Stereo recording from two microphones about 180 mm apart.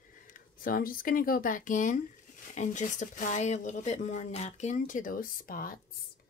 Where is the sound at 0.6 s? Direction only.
55° left (ahead or behind).